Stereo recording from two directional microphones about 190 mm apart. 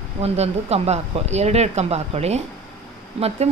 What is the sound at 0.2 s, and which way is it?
Speech, 35° right (ahead or behind).